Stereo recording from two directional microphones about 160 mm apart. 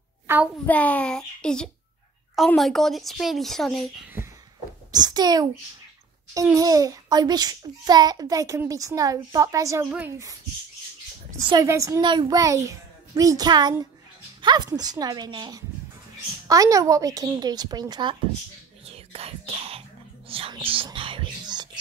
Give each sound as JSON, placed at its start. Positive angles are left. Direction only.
{"t": 0.3, "sound": "a child's voice", "side_deg": -15}
{"t": 0.7, "sound": "speech", "side_deg": 10}
{"t": 4.9, "sound": "a child's voice", "side_deg": -25}
{"t": 9.8, "sound": "a woman's voice", "side_deg": -10}
{"t": 11.3, "sound": "a child's voice", "side_deg": -25}
{"t": 18.9, "sound": "whispering", "side_deg": -40}